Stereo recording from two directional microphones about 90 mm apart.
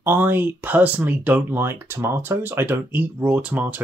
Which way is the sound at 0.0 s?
25° right (ahead or behind).